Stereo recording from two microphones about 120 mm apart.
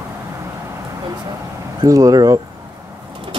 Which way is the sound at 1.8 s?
30° right (ahead or behind).